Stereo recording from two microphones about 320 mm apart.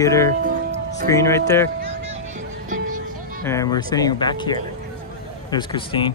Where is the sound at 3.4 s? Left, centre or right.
Centre.